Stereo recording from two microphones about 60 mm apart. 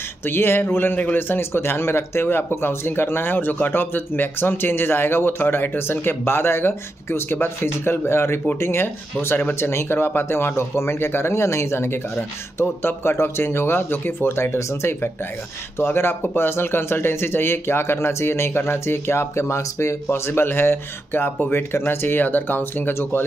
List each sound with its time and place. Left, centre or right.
0.2 s speech: left